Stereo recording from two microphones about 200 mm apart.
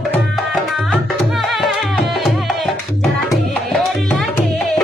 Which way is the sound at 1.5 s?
Centre (ahead or behind).